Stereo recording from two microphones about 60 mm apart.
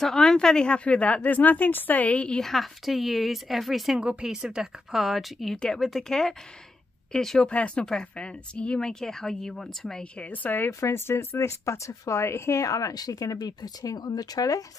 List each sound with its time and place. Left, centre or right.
0.0 s a woman's voice: centre
2.4 s speech: centre
4.0 s speech: centre
4.9 s speech: centre
10.2 s a woman's voice: left
10.7 s speech: left